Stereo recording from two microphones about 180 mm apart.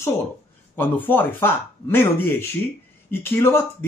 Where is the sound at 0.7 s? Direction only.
10° left (ahead or behind).